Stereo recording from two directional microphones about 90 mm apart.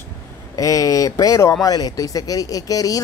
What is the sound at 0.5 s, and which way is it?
Speech, 40° left (ahead or behind).